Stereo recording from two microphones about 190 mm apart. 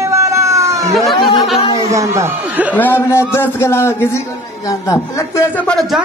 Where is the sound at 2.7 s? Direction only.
10° left (ahead or behind).